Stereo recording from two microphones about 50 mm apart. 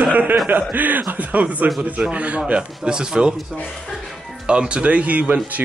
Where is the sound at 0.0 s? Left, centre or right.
Right.